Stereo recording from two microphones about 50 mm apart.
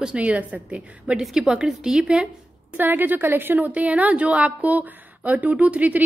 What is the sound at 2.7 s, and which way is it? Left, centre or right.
Speech, right.